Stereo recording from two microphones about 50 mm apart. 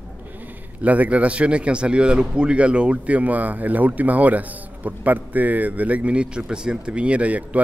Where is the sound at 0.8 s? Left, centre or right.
Right.